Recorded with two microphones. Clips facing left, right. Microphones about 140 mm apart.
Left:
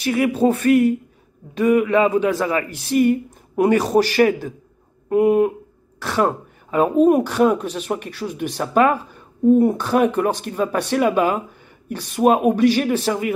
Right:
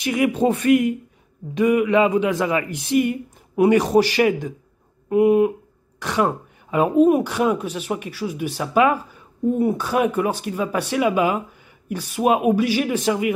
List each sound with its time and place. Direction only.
0.0 s a man's voice: 15° right (ahead or behind)